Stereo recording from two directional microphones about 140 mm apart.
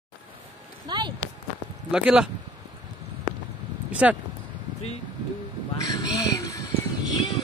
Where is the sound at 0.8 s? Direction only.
30° right (ahead or behind).